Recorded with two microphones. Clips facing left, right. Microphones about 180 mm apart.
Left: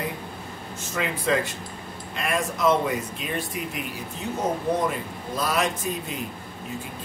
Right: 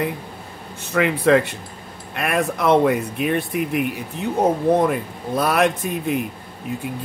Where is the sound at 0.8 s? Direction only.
65° right (ahead or behind).